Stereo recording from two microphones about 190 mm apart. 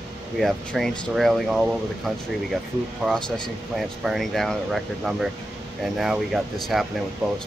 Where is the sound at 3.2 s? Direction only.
20° left (ahead or behind).